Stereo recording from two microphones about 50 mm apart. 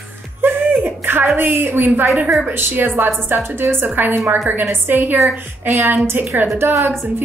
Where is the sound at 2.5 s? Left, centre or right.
Right.